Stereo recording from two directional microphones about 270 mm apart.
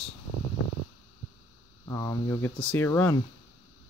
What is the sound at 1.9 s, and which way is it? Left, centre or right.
Speech, centre.